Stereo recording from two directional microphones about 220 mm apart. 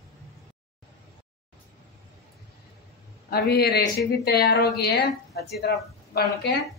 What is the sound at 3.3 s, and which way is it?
A woman's voice, 45° left (ahead or behind).